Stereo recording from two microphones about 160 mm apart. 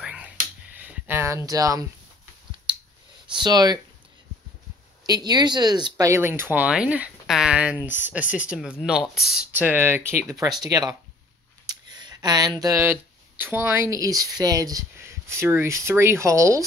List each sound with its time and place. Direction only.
0.0 s a sound: 5° right (ahead or behind)
0.7 s speech: 10° right (ahead or behind)
2.7 s clicking: 30° right (ahead or behind)
3.3 s speech: 25° right (ahead or behind)
5.0 s speech: 25° right (ahead or behind); by 9.1 s 5° right (ahead or behind)
9.1 s speech: 80° left
9.5 s speech: 10° right (ahead or behind)